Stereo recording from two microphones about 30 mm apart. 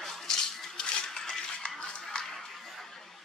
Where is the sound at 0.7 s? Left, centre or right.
Left.